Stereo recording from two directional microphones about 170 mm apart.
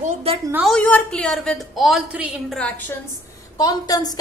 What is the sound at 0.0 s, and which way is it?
Speech, 35° right (ahead or behind).